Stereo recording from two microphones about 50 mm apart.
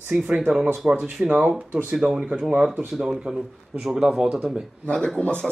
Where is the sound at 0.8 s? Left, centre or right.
Right.